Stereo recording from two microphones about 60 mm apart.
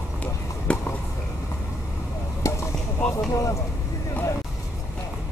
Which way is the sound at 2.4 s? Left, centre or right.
Left.